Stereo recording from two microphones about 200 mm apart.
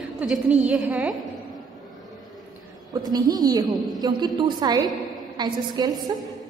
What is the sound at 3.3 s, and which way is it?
A woman's voice, 20° right (ahead or behind).